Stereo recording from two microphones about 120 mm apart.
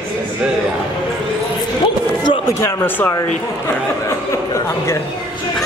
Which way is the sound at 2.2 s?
35° left (ahead or behind).